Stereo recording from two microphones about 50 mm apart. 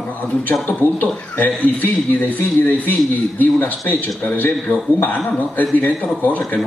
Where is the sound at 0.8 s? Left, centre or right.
Left.